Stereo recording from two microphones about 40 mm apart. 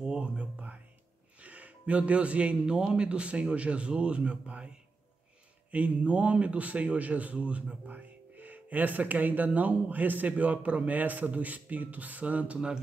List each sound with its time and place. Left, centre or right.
0.0 s music: right
2.6 s a man's voice: centre
7.8 s speech: right
12.5 s speech: centre